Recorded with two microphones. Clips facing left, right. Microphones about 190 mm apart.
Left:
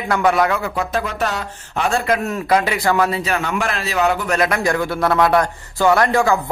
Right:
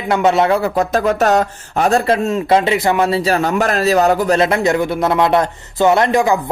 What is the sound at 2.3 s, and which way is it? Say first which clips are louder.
A man's voice: right 4 dB; 25° right (ahead or behind).